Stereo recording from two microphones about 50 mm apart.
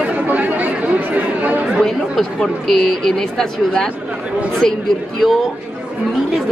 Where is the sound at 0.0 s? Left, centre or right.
Right.